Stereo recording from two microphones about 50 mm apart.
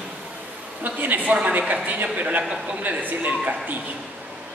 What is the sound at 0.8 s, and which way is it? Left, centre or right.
Speech, right.